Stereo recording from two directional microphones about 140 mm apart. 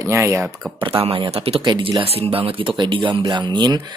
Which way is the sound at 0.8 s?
40° right (ahead or behind).